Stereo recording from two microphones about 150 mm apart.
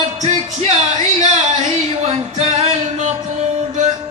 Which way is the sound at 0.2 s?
45° right (ahead or behind).